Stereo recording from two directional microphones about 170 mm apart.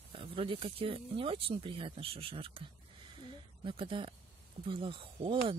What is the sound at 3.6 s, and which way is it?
Speech, 30° right (ahead or behind).